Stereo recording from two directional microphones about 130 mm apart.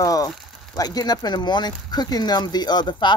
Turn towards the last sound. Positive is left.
turn(degrees=35)  # may be behind; listen again after turning